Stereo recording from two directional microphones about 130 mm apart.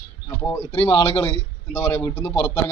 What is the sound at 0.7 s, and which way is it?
Speech, 45° left (ahead or behind).